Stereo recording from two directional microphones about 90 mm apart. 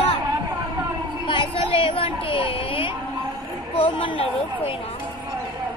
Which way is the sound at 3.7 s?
80° left.